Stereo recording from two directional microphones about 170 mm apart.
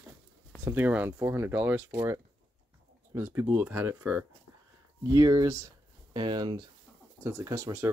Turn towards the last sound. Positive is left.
turn(degrees=-15)  # may be behind; listen again after turning